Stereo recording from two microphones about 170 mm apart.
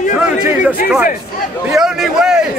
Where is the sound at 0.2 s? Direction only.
10° right (ahead or behind).